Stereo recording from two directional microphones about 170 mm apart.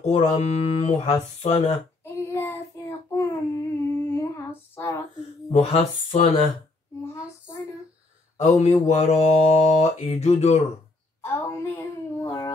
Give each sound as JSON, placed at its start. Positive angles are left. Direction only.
{"t": 0.4, "sound": "speech", "side_deg": 40}
{"t": 2.1, "sound": "child singing", "side_deg": 15}
{"t": 5.5, "sound": "speech", "side_deg": 40}
{"t": 8.4, "sound": "speech", "side_deg": 40}
{"t": 11.1, "sound": "child singing", "side_deg": 15}